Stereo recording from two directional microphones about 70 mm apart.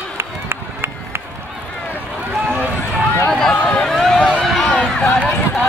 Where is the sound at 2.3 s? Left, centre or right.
Right.